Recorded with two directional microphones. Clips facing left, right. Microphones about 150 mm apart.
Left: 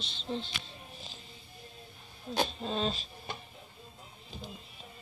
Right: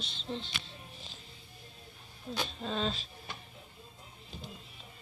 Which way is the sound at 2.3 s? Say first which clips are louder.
Left 5 dB; 35° left (ahead or behind).